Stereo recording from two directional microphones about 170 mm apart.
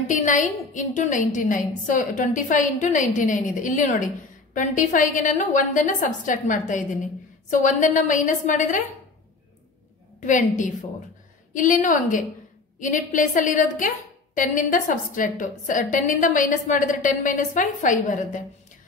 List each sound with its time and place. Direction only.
0.1 s a woman's voice: 50° left (ahead or behind)
10.2 s a woman's voice: 45° left (ahead or behind)